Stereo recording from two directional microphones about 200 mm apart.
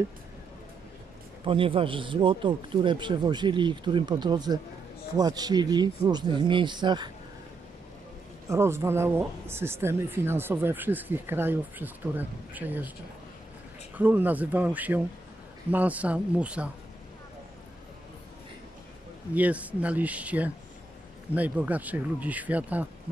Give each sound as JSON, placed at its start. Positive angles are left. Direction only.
{"t": 1.4, "sound": "speech", "side_deg": -25}
{"t": 8.5, "sound": "speech", "side_deg": -15}
{"t": 13.9, "sound": "speech", "side_deg": -10}
{"t": 19.3, "sound": "speech", "side_deg": -5}